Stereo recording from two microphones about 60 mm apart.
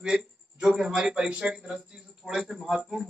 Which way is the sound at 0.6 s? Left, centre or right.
Centre.